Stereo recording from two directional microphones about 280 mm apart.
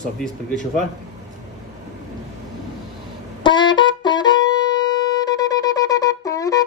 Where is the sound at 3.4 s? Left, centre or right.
Centre.